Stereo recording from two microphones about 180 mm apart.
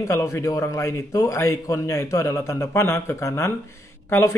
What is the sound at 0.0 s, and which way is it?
Speech, 15° left (ahead or behind).